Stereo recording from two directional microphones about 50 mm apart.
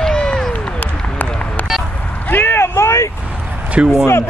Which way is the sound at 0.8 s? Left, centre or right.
Left.